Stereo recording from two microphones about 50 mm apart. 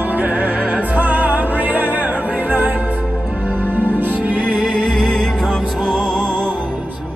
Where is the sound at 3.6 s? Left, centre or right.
Right.